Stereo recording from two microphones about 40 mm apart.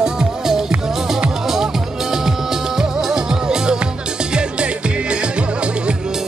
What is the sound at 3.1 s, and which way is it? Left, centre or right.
Music, centre.